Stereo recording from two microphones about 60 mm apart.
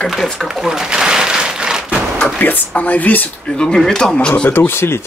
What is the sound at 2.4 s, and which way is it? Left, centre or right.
Speech, left.